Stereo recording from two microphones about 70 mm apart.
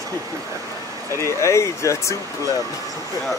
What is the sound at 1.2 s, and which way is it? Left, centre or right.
Speech, left.